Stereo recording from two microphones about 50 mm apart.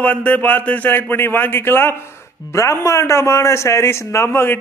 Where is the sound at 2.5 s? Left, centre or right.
Left.